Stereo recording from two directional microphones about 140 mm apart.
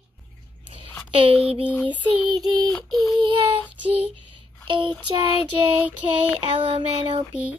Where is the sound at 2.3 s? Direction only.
25° right (ahead or behind).